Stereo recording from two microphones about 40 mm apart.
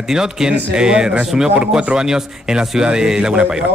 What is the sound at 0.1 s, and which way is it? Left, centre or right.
Speech, centre.